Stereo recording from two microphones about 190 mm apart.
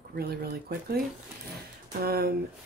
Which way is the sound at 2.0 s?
55° right (ahead or behind).